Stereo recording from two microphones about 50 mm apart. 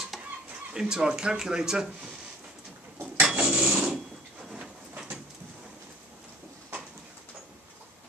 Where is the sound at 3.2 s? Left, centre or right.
Centre.